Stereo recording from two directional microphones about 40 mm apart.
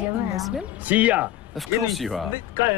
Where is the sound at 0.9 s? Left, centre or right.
Right.